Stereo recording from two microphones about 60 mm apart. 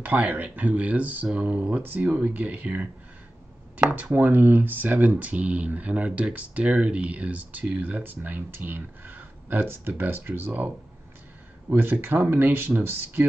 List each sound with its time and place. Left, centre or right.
0.0 s speech: right
11.7 s speech: right